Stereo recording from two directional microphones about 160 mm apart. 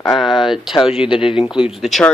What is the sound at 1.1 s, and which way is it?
Speech, 35° left (ahead or behind).